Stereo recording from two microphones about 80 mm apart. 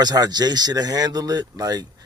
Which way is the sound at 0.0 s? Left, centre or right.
Right.